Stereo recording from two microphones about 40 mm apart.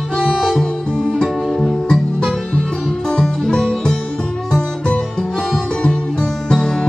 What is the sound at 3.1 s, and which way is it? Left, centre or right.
Music, centre.